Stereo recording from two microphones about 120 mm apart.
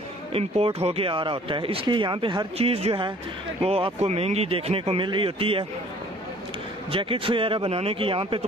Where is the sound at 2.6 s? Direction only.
55° right (ahead or behind).